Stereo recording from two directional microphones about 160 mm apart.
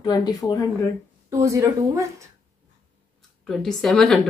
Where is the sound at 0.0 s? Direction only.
25° left (ahead or behind).